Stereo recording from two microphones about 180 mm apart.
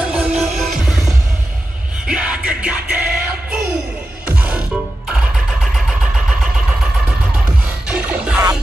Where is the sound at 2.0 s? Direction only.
5° right (ahead or behind).